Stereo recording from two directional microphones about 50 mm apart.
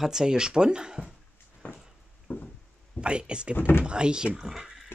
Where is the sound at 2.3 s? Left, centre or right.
Left.